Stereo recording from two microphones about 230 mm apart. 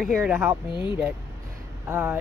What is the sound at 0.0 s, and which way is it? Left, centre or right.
Speech, centre.